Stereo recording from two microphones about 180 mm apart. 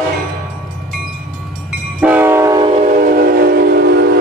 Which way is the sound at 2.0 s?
10° right (ahead or behind).